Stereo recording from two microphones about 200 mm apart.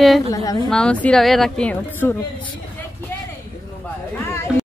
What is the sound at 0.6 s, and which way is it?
Speech, 5° left (ahead or behind).